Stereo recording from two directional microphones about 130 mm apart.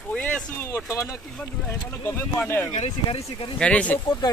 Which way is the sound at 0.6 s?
20° left (ahead or behind).